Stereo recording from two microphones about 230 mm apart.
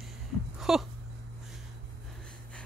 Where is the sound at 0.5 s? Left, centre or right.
Centre.